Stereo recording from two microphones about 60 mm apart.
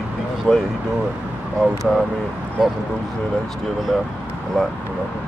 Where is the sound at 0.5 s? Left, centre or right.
Centre.